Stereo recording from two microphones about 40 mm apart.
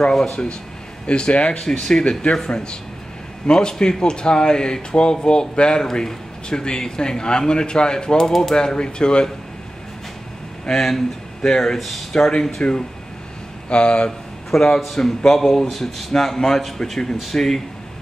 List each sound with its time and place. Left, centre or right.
0.1 s speech: centre
1.0 s speech: left
10.7 s speech: centre
13.7 s speech: left
14.5 s speech: centre